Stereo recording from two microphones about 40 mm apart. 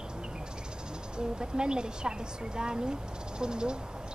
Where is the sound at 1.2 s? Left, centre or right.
Right.